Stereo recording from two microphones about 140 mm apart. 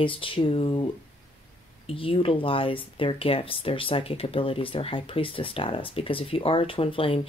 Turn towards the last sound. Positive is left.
turn(degrees=40)  # may be behind; listen again after turning